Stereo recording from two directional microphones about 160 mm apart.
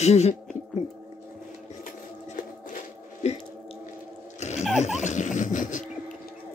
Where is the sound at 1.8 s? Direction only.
55° left (ahead or behind).